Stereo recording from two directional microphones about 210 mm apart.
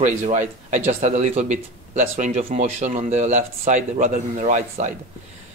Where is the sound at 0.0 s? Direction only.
35° right (ahead or behind).